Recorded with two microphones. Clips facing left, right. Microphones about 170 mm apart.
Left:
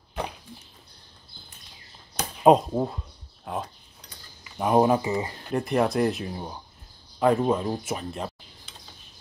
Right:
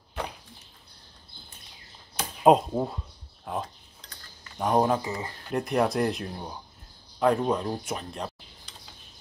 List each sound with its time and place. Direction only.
2.1 s a sound: centre (ahead or behind)
3.4 s cutlery: 5° left (ahead or behind)
5.5 s speech: centre (ahead or behind)